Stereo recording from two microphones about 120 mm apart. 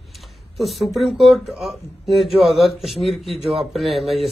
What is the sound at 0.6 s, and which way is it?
Speech, centre (ahead or behind).